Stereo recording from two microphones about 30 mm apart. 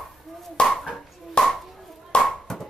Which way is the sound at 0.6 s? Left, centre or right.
Left.